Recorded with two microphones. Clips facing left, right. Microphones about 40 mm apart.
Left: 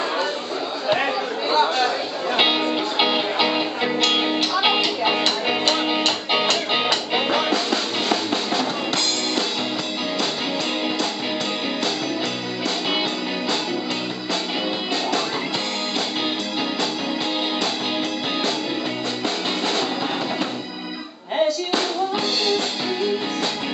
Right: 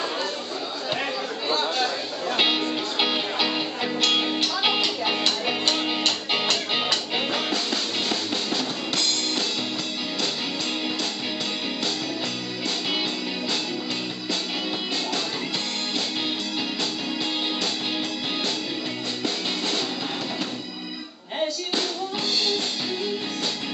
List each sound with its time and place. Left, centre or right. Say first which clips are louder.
0.8 s music: left 7 dB; centre